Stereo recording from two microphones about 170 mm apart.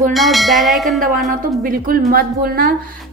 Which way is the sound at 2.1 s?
65° right (ahead or behind).